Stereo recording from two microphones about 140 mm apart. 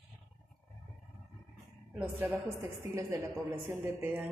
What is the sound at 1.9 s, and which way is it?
Speech, 10° right (ahead or behind).